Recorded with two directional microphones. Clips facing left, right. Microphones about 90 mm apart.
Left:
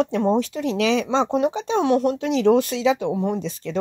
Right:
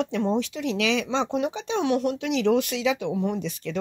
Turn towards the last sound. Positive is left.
turn(degrees=35)  # may be behind; listen again after turning